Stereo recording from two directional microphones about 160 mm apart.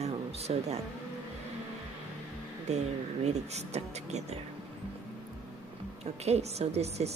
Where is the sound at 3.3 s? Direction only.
45° right (ahead or behind).